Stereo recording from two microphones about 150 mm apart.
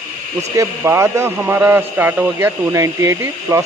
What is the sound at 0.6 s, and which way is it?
A man's voice, 20° right (ahead or behind).